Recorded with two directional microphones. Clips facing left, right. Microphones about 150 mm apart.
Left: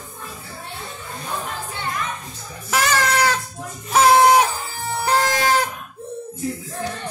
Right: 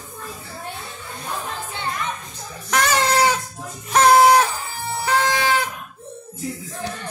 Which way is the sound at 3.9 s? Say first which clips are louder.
Even; centre (ahead or behind).